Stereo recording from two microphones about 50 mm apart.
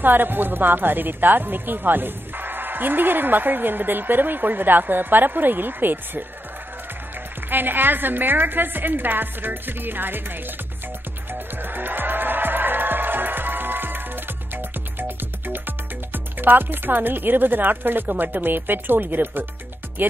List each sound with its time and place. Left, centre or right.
0.0 s a woman's voice: right
7.4 s a woman's voice: right
11.3 s music: right
20.0 s speech: right